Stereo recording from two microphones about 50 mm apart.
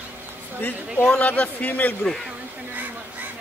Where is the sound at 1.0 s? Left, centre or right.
Left.